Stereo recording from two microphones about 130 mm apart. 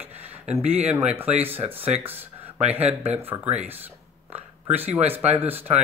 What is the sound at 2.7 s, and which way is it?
Speech, 15° right (ahead or behind).